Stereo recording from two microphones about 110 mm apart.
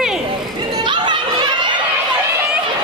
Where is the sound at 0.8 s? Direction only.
45° right (ahead or behind).